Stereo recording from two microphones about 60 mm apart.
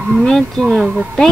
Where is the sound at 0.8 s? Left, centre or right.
Centre.